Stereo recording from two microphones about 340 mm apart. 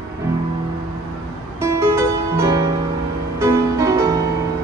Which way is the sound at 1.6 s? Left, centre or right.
Centre.